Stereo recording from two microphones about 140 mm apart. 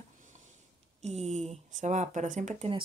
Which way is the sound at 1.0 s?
50° right (ahead or behind).